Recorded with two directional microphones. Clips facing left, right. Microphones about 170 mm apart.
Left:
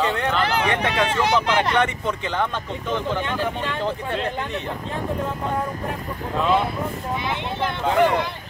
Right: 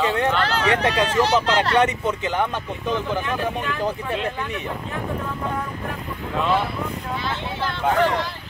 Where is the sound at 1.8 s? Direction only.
15° right (ahead or behind).